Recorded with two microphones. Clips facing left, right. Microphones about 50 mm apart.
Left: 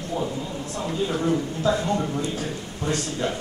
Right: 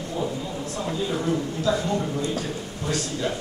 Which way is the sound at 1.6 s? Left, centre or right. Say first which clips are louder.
Left 1 dB; centre.